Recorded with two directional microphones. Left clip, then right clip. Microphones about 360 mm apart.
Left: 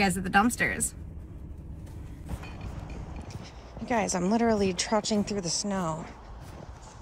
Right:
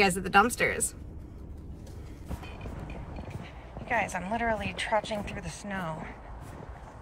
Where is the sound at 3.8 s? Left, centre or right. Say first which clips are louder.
Left 2 dB; centre.